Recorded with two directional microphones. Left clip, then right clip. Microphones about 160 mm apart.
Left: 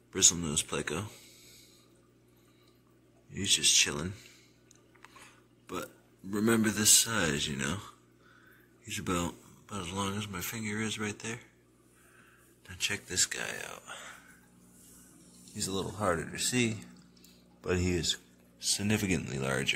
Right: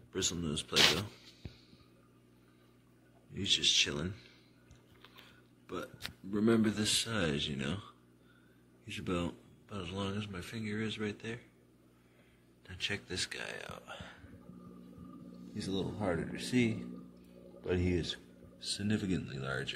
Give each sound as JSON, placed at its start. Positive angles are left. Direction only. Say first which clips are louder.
{"t": 0.1, "sound": "speech", "louder": "left 8 dB", "side_deg": 10}
{"t": 3.3, "sound": "speech", "louder": "left 3 dB", "side_deg": 10}
{"t": 6.3, "sound": "a man's voice", "louder": "left 2 dB", "side_deg": 5}
{"t": 12.6, "sound": "a man's voice", "louder": "left 4 dB", "side_deg": 0}
{"t": 15.5, "sound": "speech", "louder": "left 3 dB", "side_deg": 25}